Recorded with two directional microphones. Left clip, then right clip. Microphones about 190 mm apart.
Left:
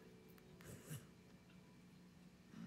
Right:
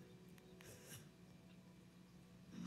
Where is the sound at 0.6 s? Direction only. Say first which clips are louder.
Left 2 dB; 25° right (ahead or behind).